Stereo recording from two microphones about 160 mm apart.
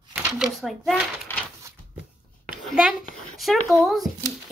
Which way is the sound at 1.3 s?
15° left (ahead or behind).